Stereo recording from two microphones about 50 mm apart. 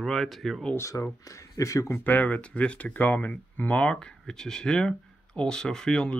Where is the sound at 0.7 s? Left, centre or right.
Left.